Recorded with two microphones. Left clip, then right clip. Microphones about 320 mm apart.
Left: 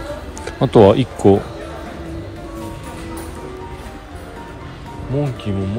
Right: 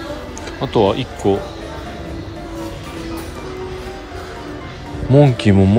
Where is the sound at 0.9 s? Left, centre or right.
Centre.